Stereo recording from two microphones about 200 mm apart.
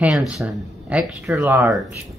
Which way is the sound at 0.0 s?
5° right (ahead or behind).